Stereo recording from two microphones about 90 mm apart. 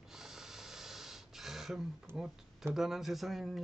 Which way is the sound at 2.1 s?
30° right (ahead or behind).